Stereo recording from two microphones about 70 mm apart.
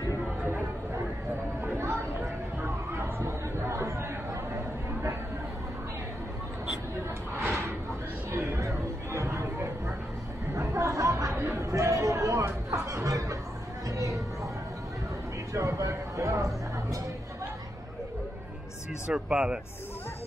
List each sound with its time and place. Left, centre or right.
2.1 s chatter: right
7.3 s a sound: right
8.3 s chatter: right
13.8 s a sound: right
15.5 s music: right
19.0 s speech: centre